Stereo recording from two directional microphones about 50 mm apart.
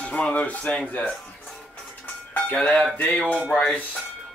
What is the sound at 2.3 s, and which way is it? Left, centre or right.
Cutlery, left.